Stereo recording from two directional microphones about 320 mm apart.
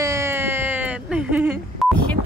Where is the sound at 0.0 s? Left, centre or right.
Centre.